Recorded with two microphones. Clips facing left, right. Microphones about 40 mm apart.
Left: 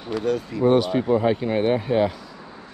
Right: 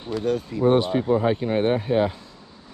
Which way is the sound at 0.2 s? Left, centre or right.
Left.